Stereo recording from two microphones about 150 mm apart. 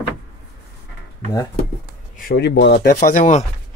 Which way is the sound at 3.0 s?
55° left (ahead or behind).